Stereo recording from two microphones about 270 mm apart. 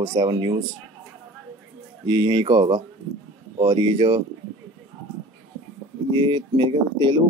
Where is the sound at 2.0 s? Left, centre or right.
Centre.